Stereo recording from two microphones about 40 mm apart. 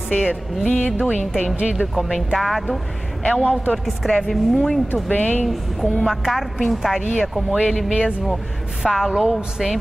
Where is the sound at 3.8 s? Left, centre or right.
Centre.